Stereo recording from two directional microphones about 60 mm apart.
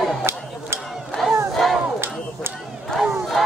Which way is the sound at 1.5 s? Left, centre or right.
Centre.